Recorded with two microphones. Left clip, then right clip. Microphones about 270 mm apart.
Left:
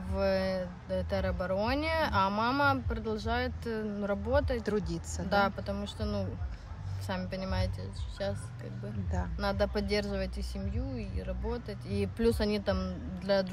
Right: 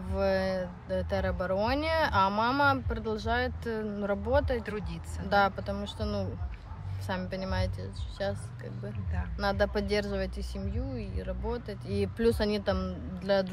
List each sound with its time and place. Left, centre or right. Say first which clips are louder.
0.1 s speech: right 2 dB; centre
4.6 s speech: left 5 dB; centre
5.3 s speech: right 3 dB; centre
9.4 s speech: right 3 dB; centre